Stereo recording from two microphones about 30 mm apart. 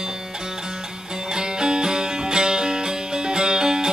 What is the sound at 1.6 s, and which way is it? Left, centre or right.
Music, right.